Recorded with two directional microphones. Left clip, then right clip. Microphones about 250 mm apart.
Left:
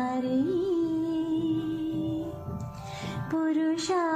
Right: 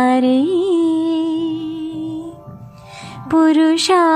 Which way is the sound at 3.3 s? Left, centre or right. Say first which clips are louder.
Right 15 dB; right.